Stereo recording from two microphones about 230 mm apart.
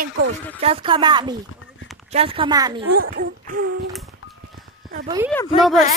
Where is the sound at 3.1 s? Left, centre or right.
Right.